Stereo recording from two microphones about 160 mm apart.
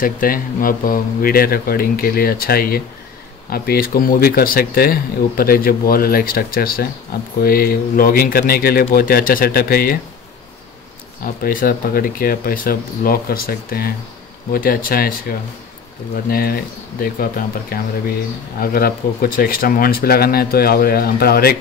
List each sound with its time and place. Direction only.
0.0 s speech: 60° left (ahead or behind)
11.4 s speech: 65° left (ahead or behind)